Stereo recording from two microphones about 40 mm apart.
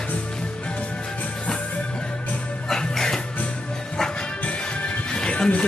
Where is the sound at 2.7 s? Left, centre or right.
Centre.